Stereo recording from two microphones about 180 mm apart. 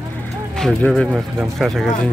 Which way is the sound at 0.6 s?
Centre (ahead or behind).